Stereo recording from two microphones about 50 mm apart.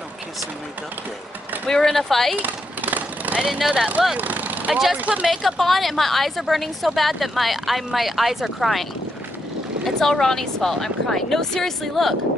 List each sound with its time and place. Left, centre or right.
1.7 s speech: centre
2.4 s vehicle: right
3.4 s speech: centre
4.2 s vehicle: right
5.2 s speech: centre
9.8 s speech: centre